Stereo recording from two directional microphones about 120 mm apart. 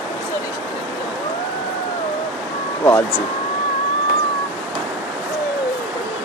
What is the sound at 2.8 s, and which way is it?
Speech, 20° left (ahead or behind).